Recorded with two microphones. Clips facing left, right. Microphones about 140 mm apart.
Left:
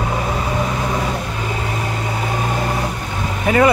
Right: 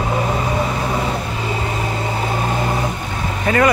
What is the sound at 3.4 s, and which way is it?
Vehicle, 15° left (ahead or behind).